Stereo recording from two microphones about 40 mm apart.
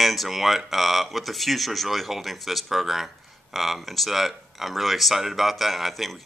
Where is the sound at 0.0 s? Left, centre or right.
Centre.